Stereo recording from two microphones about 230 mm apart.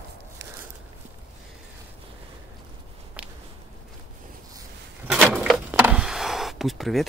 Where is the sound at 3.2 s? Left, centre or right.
Centre.